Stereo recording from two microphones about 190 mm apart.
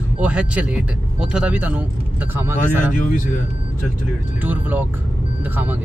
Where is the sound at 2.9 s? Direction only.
45° left (ahead or behind).